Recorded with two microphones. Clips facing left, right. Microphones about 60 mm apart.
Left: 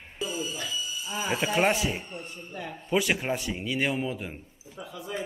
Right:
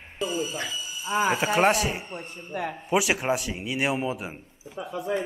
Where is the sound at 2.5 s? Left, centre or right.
Right.